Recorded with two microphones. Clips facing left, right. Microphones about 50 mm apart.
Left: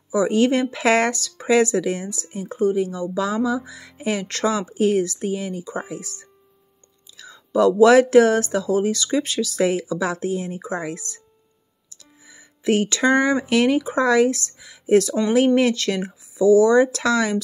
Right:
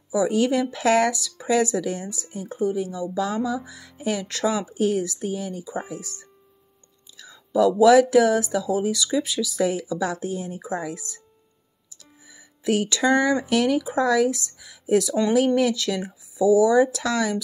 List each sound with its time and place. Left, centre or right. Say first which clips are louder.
0.3 s speech: left 3 dB; left
2.2 s speech: left 4 dB; left
7.2 s speech: left 2 dB; left
11.9 s music: left 2 dB; left
12.9 s speech: even; left
13.4 s speech: left 3 dB; left
13.7 s speech: left 2 dB; left
16.0 s speech: left 2 dB; left